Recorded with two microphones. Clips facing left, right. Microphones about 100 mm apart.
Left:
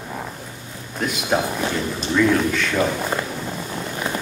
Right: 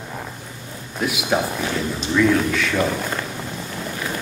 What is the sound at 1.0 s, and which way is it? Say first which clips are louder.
A man's voice: even; centre (ahead or behind).